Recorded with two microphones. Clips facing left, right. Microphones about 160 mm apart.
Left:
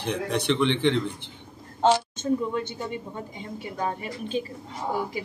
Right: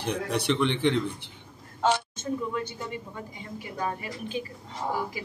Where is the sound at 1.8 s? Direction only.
30° left (ahead or behind).